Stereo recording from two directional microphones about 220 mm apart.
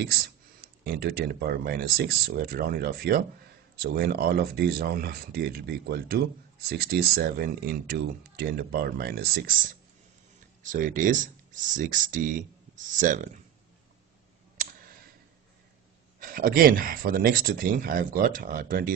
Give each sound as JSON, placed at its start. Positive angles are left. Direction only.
{"t": 0.8, "sound": "speech", "side_deg": -45}
{"t": 16.2, "sound": "speech", "side_deg": -40}